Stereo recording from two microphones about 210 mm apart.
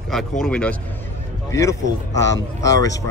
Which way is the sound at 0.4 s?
5° left (ahead or behind).